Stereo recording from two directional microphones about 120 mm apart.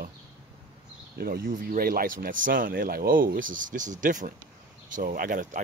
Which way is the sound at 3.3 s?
90° right.